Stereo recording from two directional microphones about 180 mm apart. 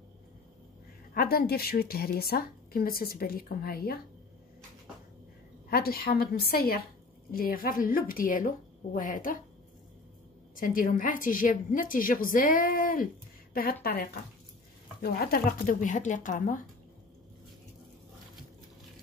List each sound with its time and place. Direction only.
1.1 s a woman's voice: 55° left (ahead or behind)
5.7 s a woman's voice: 55° left (ahead or behind)
10.5 s a woman's voice: 50° left (ahead or behind)
15.0 s a woman's voice: 55° left (ahead or behind)